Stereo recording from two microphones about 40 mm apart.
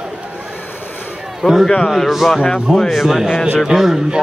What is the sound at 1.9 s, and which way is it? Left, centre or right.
Speech, centre.